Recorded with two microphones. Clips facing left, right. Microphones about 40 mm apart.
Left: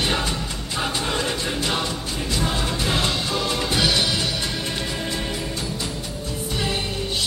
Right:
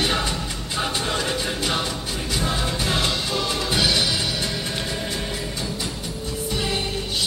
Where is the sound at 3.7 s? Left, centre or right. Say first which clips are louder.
Even; centre.